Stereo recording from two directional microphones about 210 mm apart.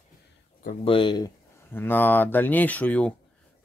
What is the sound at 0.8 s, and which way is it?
Speech, 25° left (ahead or behind).